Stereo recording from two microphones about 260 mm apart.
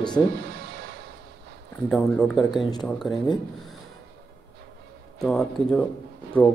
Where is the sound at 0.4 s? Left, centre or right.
Right.